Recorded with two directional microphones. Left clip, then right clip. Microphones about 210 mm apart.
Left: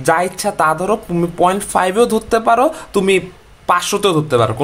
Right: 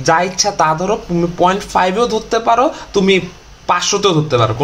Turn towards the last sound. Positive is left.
turn(degrees=25)  # may be behind; listen again after turning